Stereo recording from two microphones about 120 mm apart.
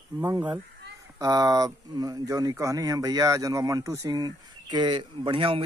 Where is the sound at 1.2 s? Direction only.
30° right (ahead or behind).